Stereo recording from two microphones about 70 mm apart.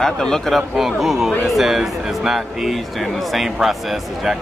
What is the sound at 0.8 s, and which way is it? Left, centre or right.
Speech, centre.